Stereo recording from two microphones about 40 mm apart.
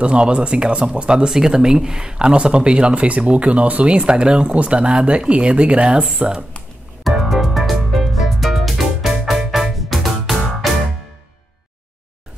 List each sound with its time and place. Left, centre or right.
0.0 s speech: right
1.3 s speech: centre
7.1 s music: centre